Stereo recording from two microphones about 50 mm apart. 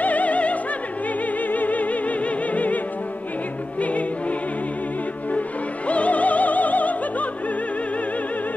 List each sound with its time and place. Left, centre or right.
0.0 s opera: left
1.5 s music: left
5.9 s opera: left